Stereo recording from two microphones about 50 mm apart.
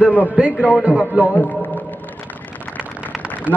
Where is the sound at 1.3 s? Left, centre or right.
Left.